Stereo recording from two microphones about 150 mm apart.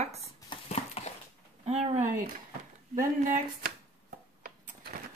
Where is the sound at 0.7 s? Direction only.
45° left (ahead or behind).